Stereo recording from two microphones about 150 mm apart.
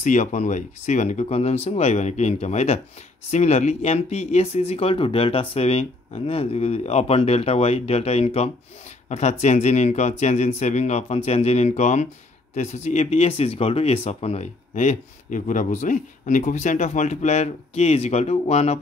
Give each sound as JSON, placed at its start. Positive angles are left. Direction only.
{"t": 0.0, "sound": "speech", "side_deg": 50}